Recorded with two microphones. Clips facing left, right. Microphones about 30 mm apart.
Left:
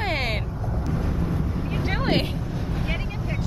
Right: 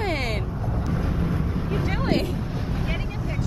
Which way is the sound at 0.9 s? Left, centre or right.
Centre.